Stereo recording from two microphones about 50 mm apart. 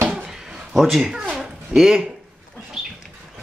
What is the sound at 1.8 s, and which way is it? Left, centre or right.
Speech, centre.